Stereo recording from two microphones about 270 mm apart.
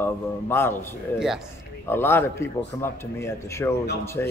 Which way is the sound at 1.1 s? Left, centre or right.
Centre.